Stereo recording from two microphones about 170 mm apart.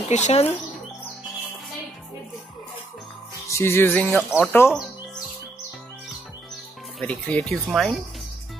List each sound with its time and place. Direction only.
0.1 s speech: 40° left (ahead or behind)
3.4 s music: 15° left (ahead or behind)
4.0 s speech: centre (ahead or behind)
4.5 s speech: 15° left (ahead or behind)
7.0 s speech: 5° left (ahead or behind)